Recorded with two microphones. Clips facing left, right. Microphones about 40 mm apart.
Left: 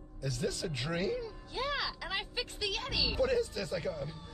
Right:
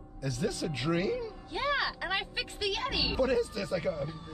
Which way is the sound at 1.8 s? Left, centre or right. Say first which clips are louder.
Right 5 dB; right.